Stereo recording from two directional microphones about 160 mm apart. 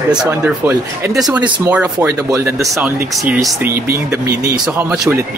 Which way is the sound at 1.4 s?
30° right (ahead or behind).